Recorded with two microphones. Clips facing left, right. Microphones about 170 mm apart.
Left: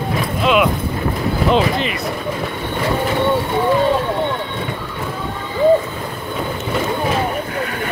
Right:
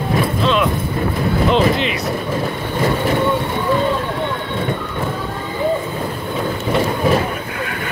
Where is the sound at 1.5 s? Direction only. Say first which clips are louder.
Even; centre (ahead or behind).